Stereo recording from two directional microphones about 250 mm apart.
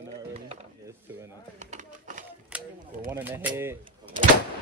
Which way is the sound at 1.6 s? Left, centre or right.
Right.